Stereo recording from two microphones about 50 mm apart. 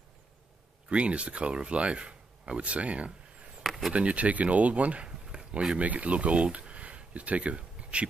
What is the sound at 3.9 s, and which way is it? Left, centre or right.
Speech, right.